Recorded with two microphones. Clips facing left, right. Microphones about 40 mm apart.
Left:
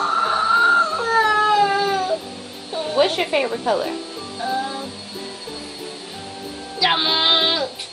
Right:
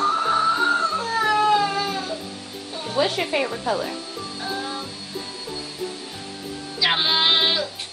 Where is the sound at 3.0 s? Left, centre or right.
Left.